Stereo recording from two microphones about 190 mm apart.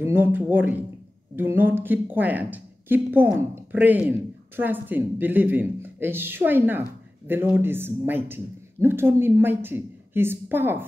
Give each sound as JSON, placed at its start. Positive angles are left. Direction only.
{"t": 0.0, "sound": "speech", "side_deg": -10}